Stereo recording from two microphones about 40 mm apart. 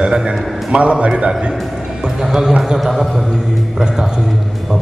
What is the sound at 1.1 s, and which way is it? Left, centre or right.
Music, right.